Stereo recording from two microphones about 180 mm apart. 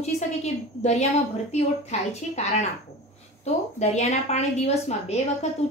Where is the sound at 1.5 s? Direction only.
40° left (ahead or behind).